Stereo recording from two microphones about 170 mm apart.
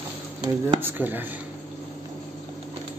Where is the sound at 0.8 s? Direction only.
10° right (ahead or behind).